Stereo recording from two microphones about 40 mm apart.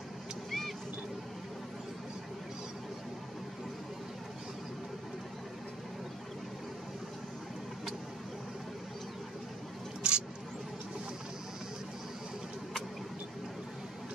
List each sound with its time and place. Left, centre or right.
0.5 s vehicle: centre
10.0 s mouse: right